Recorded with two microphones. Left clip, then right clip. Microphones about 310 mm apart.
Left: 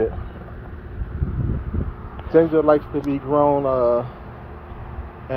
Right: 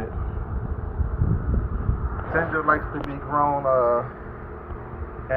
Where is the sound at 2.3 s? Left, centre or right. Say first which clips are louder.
Left 6 dB; left.